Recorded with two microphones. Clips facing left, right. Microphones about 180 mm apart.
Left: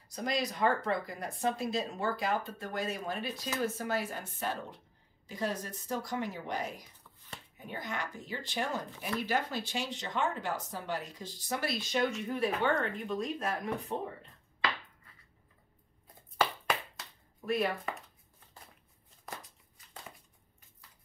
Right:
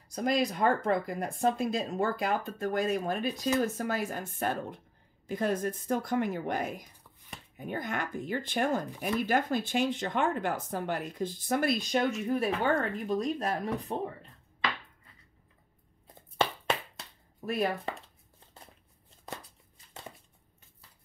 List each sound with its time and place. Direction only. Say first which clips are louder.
0.4 s speech: right 1 dB; 50° right (ahead or behind)
13.0 s speech: right 4 dB; 35° right (ahead or behind)
16.3 s a sound: right 2 dB; 25° right (ahead or behind)